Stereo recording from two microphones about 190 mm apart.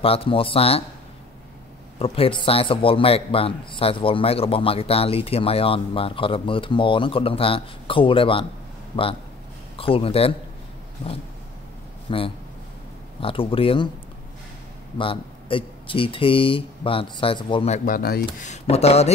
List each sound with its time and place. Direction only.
0.0 s a man's voice: 30° left (ahead or behind)
2.0 s a man's voice: 30° left (ahead or behind)
9.8 s a man's voice: 30° left (ahead or behind)
12.1 s a man's voice: 25° left (ahead or behind)
15.0 s a man's voice: 30° left (ahead or behind); by 18.5 s 50° left (ahead or behind)
18.5 s speech: 35° left (ahead or behind)